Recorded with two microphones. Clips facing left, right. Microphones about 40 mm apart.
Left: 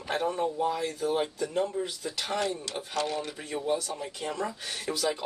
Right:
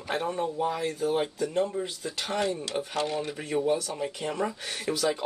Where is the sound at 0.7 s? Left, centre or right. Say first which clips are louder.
Right 1 dB; centre.